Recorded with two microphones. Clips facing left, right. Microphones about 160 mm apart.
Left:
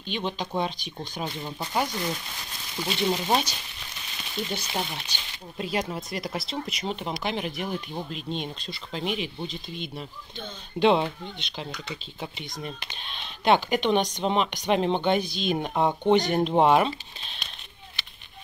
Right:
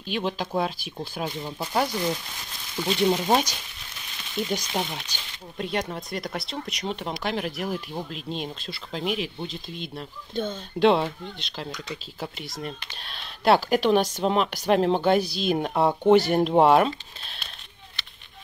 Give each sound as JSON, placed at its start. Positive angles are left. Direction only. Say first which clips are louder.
{"t": 0.0, "sound": "speech", "louder": "right 2 dB", "side_deg": -5}
{"t": 3.1, "sound": "speech", "louder": "right 1 dB", "side_deg": -15}
{"t": 5.6, "sound": "speech", "louder": "even", "side_deg": 0}
{"t": 10.3, "sound": "speech", "louder": "right 13 dB", "side_deg": -50}
{"t": 10.8, "sound": "speech", "louder": "right 1 dB", "side_deg": 0}